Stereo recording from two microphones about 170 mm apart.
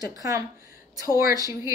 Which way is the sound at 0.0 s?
20° right (ahead or behind).